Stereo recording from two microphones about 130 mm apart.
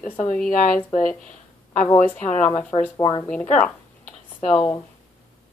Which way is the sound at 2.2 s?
10° left (ahead or behind).